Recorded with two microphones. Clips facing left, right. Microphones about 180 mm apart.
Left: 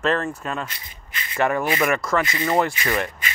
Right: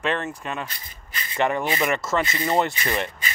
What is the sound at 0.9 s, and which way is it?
Rub, 40° right (ahead or behind).